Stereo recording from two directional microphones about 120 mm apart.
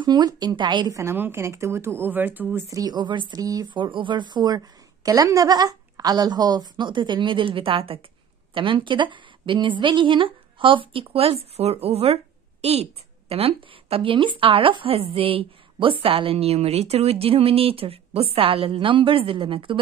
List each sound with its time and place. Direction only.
0.0 s speech: 35° right (ahead or behind)
0.9 s speech: 20° right (ahead or behind)
2.7 s speech: 35° right (ahead or behind)